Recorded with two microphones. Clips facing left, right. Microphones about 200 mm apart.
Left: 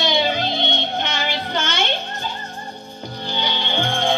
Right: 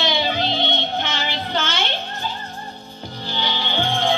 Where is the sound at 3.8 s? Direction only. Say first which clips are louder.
Right 1 dB; 50° left (ahead or behind).